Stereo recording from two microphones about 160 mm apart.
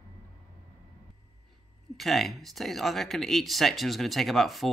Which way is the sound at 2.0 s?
Centre (ahead or behind).